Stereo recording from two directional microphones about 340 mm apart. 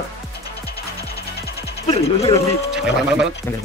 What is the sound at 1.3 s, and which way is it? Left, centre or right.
Music, left.